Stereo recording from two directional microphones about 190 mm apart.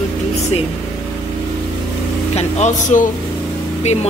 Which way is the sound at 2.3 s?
40° left (ahead or behind).